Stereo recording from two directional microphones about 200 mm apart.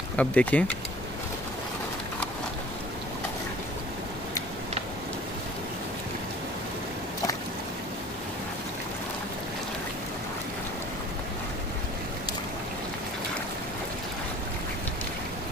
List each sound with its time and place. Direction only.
0.1 s speech: 5° left (ahead or behind)